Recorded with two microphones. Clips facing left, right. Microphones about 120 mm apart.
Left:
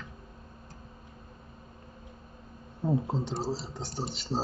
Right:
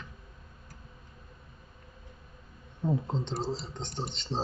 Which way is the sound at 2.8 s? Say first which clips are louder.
Left 2 dB; 5° left (ahead or behind).